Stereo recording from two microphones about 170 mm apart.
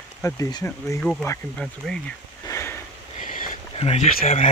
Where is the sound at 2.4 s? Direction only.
15° left (ahead or behind).